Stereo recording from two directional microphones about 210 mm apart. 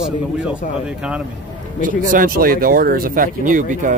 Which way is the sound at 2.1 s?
40° right (ahead or behind).